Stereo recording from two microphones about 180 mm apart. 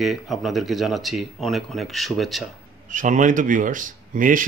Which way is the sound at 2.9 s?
45° right (ahead or behind).